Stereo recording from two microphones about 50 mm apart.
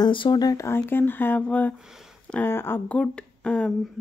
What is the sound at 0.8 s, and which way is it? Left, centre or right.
Speech, left.